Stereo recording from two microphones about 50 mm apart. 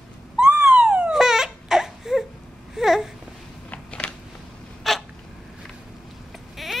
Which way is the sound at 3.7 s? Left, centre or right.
Left.